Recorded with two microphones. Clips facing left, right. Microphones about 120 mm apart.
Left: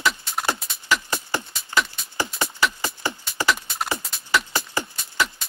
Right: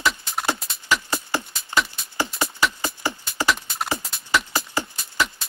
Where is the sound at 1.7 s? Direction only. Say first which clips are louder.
Even; 20° right (ahead or behind).